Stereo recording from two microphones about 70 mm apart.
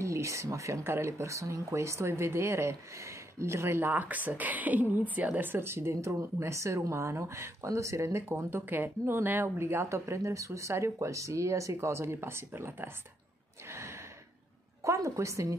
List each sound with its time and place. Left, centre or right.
0.0 s speech: right
13.7 s gasp: right
14.9 s a woman's voice: right